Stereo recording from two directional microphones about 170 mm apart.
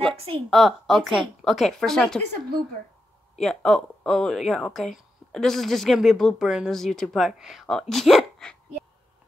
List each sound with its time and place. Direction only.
0.1 s a woman's voice: 35° right (ahead or behind)
0.5 s speech: centre (ahead or behind)
3.3 s speech: 5° left (ahead or behind)